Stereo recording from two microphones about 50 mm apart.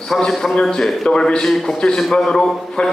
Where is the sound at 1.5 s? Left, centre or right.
Centre.